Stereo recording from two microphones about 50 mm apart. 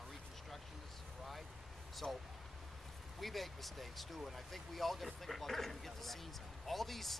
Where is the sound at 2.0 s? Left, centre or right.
Centre.